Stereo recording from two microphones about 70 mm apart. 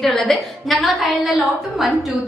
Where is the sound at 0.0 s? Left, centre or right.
Centre.